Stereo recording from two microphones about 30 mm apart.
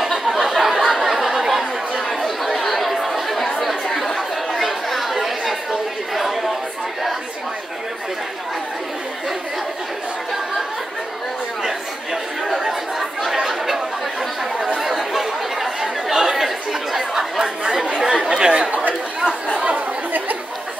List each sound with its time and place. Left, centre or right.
0.3 s a sound: centre
1.5 s chatter: centre
14.8 s chatter: centre
17.8 s chatter: right
20.1 s chatter: right